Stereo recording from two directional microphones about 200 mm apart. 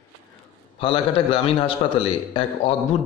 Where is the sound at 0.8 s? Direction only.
25° left (ahead or behind).